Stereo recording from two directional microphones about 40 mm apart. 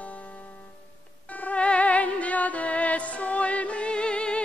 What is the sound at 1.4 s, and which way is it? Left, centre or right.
Music, left.